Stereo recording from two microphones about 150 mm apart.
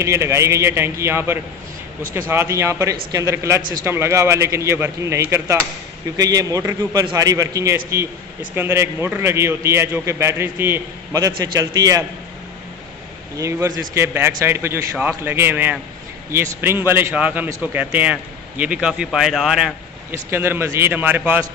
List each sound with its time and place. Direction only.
0.0 s a man's voice: 20° right (ahead or behind)
13.4 s a man's voice: 20° right (ahead or behind); by 19.7 s 5° right (ahead or behind)
20.1 s a man's voice: 15° right (ahead or behind)